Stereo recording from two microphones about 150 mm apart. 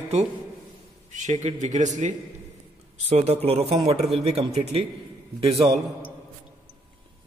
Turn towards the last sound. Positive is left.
turn(degrees=-25)  # may be behind; listen again after turning